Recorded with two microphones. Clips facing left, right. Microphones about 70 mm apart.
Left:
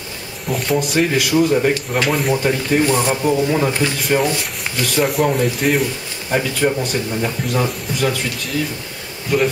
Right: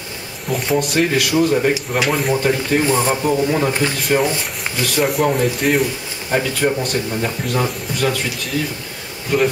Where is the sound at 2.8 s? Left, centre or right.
Centre.